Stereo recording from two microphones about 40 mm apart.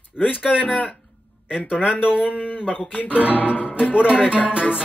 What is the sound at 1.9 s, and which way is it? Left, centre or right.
Speech, left.